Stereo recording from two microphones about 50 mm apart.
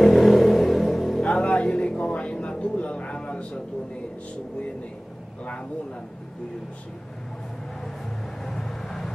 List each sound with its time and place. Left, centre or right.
0.0 s vehicle: centre
1.2 s a sound: left
2.5 s a man's voice: left
8.5 s vehicle: centre